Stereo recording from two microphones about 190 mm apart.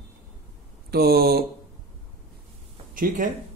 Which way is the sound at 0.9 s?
55° right (ahead or behind).